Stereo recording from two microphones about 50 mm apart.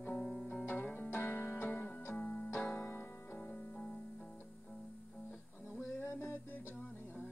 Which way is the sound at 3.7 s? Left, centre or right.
Left.